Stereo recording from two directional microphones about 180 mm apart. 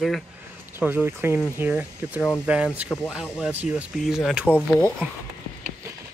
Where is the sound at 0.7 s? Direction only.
10° right (ahead or behind).